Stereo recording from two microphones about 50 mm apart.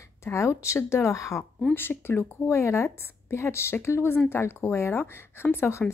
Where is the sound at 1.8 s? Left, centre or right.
Left.